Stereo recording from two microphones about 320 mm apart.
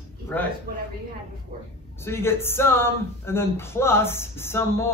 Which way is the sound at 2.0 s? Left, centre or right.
Centre.